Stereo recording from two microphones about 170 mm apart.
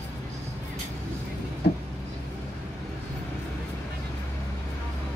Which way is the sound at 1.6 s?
70° left (ahead or behind).